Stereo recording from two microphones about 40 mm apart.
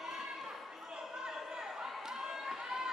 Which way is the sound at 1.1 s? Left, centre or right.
Centre.